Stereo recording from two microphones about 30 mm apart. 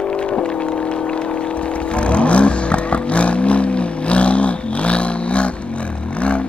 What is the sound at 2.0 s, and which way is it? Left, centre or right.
Vehicle, left.